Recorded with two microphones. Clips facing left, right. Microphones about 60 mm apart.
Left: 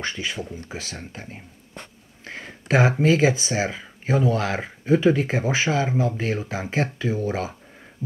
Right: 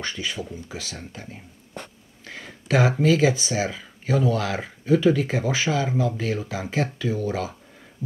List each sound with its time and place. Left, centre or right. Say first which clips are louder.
0.0 s speech: left 1 dB; left